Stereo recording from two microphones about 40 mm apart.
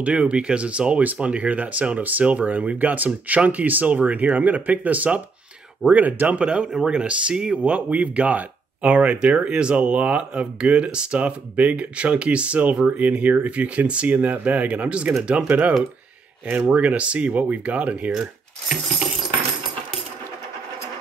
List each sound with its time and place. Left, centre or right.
0.0 s speech: right
6.4 s speech: right
14.0 s speech: right
14.8 s speech: right
16.4 s speech: right
17.3 s speech: right
18.1 s speech: centre